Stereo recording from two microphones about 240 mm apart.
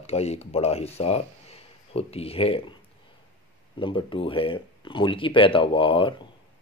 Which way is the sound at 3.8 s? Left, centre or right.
Left.